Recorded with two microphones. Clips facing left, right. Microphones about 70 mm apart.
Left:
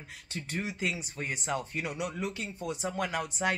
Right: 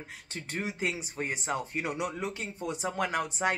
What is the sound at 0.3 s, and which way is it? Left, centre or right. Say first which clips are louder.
Speech: even; right.